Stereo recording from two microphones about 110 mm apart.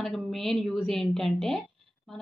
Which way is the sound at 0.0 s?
Centre (ahead or behind).